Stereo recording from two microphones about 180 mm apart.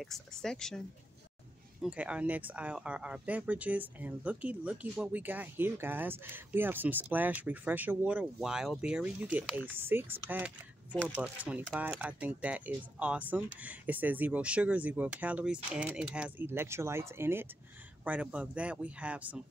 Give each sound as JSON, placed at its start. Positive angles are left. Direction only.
{"t": 0.0, "sound": "speech", "side_deg": 0}